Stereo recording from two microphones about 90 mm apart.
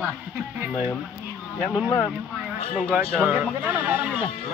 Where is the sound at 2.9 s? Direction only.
20° right (ahead or behind).